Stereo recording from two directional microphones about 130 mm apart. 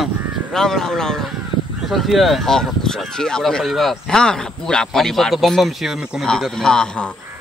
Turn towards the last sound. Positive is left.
turn(degrees=5)  # may be behind; listen again after turning